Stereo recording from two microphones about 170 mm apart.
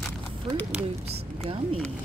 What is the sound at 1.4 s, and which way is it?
Speech, 35° right (ahead or behind).